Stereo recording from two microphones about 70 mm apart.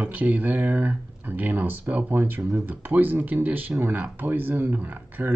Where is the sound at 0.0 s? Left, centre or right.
Right.